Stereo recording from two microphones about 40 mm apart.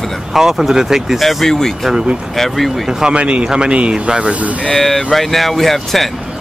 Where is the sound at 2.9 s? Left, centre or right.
Centre.